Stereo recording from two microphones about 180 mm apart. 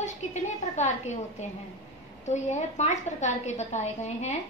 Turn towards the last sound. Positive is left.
turn(degrees=40)  # may be behind; listen again after turning